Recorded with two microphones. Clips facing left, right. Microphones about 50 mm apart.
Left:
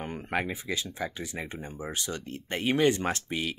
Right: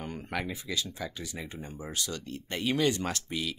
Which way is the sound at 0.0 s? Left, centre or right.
Left.